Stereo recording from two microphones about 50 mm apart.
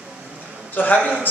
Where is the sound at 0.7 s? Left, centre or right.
Left.